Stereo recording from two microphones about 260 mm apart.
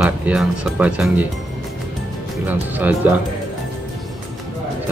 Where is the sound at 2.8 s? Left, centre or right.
Centre.